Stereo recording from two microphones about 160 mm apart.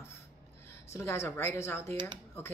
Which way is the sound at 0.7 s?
15° left (ahead or behind).